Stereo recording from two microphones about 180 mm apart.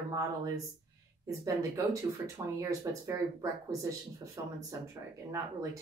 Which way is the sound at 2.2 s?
20° right (ahead or behind).